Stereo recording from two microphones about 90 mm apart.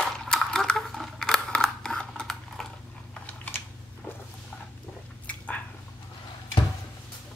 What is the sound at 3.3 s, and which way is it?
Typing, 25° left (ahead or behind).